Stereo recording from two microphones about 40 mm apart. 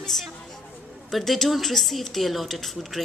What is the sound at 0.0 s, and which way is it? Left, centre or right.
A woman's voice, centre.